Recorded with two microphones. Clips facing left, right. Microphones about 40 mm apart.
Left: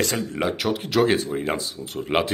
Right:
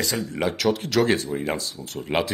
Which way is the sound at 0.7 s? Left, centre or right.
Centre.